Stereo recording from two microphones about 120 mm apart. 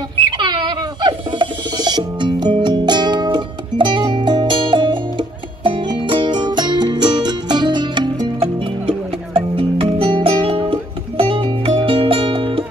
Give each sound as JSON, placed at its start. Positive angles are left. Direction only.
{"t": 0.4, "sound": "music", "side_deg": -40}
{"t": 8.4, "sound": "music", "side_deg": -50}